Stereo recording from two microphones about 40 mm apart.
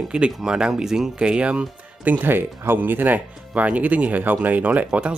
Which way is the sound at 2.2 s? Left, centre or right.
Right.